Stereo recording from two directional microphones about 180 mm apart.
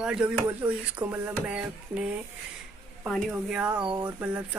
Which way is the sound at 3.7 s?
25° right (ahead or behind).